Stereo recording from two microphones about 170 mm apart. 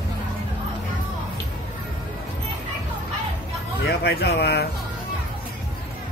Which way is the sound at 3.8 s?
70° left (ahead or behind).